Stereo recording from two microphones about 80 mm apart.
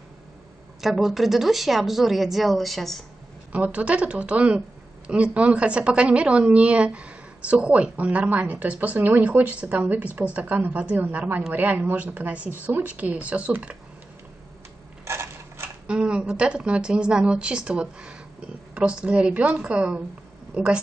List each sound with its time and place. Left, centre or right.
0.7 s speech: centre
3.5 s a woman's voice: centre
15.0 s a sound: right
15.9 s a woman's voice: centre